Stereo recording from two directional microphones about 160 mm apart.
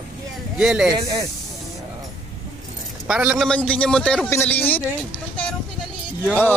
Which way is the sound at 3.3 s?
5° left (ahead or behind).